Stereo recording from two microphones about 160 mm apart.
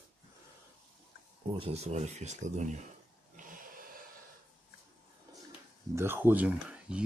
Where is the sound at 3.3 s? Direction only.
55° right (ahead or behind).